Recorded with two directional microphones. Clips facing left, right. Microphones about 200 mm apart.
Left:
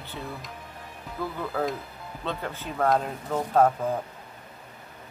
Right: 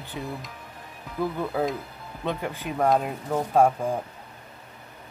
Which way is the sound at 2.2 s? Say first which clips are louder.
Right 3 dB; 15° right (ahead or behind).